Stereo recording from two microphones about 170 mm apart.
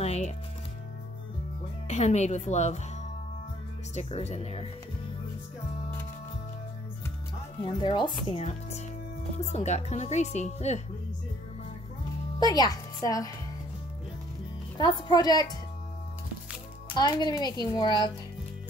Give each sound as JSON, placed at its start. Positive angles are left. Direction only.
{"t": 0.0, "sound": "music", "side_deg": 40}
{"t": 1.9, "sound": "speech", "side_deg": 40}
{"t": 3.9, "sound": "speech", "side_deg": 40}
{"t": 7.8, "sound": "speech", "side_deg": 25}
{"t": 8.3, "sound": "speech", "side_deg": 40}
{"t": 12.4, "sound": "a child's voice", "side_deg": 25}
{"t": 14.8, "sound": "speech", "side_deg": 25}
{"t": 16.9, "sound": "speech", "side_deg": 25}